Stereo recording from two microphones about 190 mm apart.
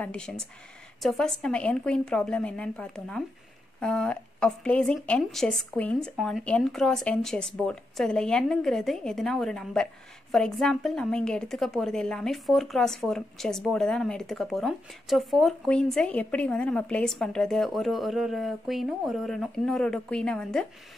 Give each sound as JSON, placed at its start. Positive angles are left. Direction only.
{"t": 0.0, "sound": "a woman's voice", "side_deg": 5}